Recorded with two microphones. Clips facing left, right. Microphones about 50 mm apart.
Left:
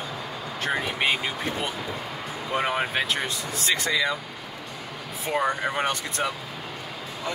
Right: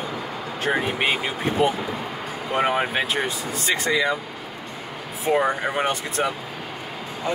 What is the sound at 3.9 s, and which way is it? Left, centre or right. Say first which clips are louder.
Speech: right 3 dB; centre.